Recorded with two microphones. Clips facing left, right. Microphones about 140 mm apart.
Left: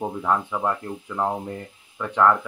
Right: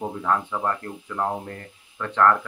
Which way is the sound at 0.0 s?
10° left (ahead or behind).